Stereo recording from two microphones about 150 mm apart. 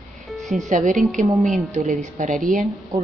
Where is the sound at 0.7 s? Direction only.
60° right (ahead or behind).